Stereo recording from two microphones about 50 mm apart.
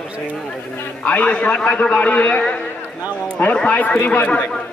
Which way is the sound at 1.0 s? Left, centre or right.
Left.